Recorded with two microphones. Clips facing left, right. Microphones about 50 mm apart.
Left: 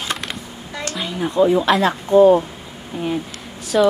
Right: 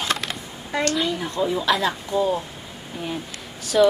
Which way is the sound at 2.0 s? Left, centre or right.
Left.